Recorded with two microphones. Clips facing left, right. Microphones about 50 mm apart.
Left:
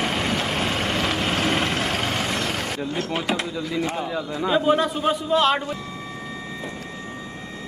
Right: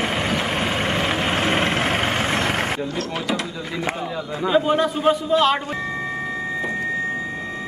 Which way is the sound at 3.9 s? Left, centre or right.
Centre.